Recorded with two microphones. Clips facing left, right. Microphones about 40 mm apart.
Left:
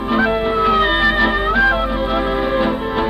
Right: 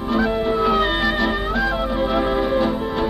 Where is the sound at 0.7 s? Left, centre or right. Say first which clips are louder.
Left 7 dB; centre.